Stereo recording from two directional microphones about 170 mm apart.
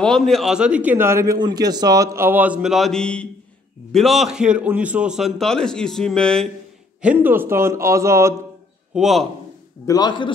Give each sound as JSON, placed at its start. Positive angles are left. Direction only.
{"t": 0.0, "sound": "a man's voice", "side_deg": 0}
{"t": 7.0, "sound": "a man's voice", "side_deg": -10}
{"t": 8.9, "sound": "a man's voice", "side_deg": 0}
{"t": 9.8, "sound": "a man's voice", "side_deg": 25}